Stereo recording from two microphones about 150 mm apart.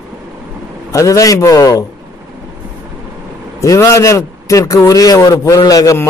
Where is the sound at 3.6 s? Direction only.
20° left (ahead or behind).